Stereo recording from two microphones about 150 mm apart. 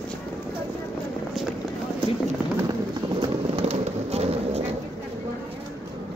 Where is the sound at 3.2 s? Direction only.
40° right (ahead or behind).